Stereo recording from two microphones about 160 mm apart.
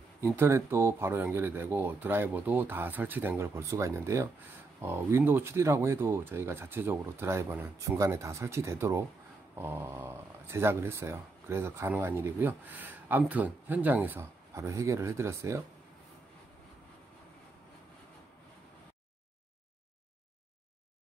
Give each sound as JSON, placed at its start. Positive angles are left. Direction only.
{"t": 0.2, "sound": "speech", "side_deg": -15}